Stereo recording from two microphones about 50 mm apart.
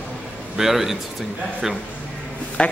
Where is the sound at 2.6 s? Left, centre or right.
Left.